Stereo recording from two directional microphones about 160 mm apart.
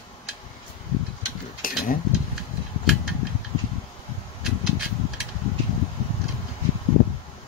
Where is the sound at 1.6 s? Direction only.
60° left (ahead or behind).